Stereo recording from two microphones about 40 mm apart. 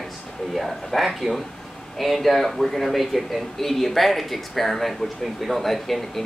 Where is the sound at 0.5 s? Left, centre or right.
Centre.